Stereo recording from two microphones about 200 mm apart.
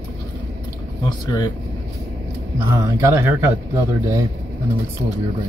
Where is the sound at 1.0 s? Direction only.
20° left (ahead or behind).